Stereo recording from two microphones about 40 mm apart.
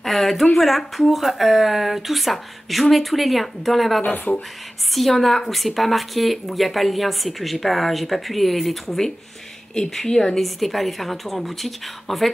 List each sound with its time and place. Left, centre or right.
0.0 s speech: centre
4.0 s speech: left
4.9 s a woman's voice: centre
10.4 s speech: centre